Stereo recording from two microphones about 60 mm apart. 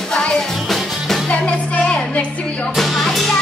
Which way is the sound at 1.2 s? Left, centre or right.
Centre.